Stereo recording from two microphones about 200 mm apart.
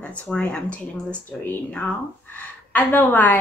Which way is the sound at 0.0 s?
5° left (ahead or behind).